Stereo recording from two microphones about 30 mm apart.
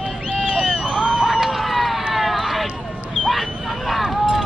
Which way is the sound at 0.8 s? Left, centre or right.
Right.